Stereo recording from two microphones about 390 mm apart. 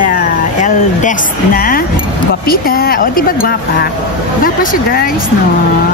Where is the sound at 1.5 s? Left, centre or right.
Left.